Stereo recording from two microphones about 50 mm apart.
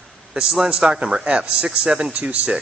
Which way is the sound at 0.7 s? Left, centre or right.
Centre.